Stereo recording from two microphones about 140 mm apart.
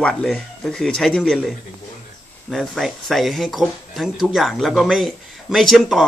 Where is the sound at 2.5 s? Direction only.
Centre (ahead or behind).